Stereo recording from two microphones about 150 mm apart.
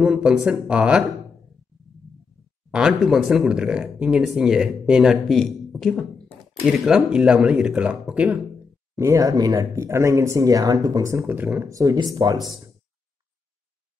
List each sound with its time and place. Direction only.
0.0 s speech: 5° right (ahead or behind)
2.7 s speech: 5° right (ahead or behind)
8.9 s speech: 20° right (ahead or behind)